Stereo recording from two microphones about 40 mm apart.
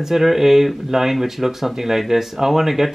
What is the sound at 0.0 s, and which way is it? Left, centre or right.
Speech, centre.